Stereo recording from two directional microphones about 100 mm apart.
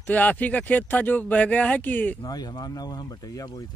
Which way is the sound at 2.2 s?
40° left (ahead or behind).